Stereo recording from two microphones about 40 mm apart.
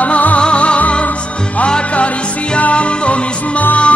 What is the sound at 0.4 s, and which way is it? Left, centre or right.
Music, left.